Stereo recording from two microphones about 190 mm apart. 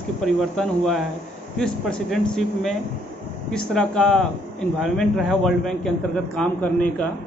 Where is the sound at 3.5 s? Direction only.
5° left (ahead or behind).